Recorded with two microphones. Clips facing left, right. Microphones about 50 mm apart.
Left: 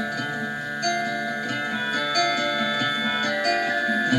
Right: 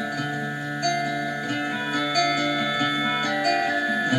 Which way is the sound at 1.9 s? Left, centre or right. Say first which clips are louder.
Right 1 dB; centre.